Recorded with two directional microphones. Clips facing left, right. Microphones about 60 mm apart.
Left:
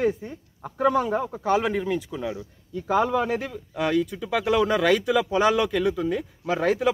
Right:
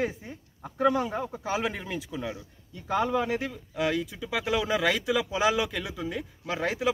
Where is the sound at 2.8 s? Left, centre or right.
Centre.